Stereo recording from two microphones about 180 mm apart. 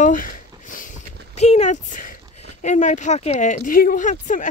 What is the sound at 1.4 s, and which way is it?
Speech, 40° left (ahead or behind).